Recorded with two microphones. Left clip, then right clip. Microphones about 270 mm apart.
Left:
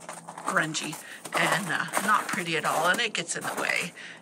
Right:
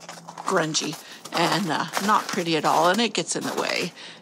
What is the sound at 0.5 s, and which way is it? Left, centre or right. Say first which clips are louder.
Speech: right 4 dB; centre.